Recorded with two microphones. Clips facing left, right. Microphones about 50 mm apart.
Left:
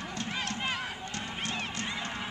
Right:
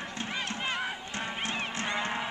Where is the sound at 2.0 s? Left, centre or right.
Right.